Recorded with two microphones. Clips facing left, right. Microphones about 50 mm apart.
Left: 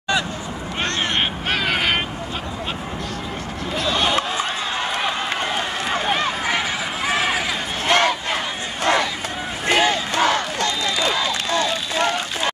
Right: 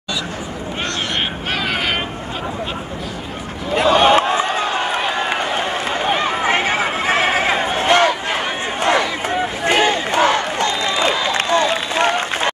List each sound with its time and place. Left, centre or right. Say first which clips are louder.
1.5 s vehicle: even; centre
3.8 s a sound: right 9 dB; right
6.0 s run: right 6 dB; right
7.9 s a sound: right 2 dB; centre
8.8 s crowd: right 2 dB; right
11.4 s run: right 5 dB; right